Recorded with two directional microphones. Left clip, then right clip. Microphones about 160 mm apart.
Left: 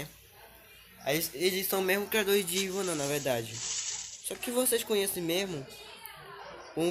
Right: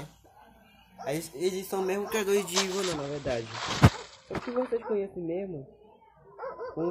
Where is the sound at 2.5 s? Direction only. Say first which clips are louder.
Right 3 dB; 55° right (ahead or behind).